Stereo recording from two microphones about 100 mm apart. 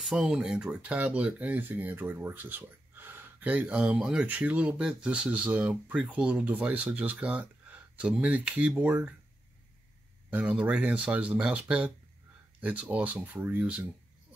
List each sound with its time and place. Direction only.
0.0 s speech: 5° right (ahead or behind)
10.3 s speech: 15° right (ahead or behind)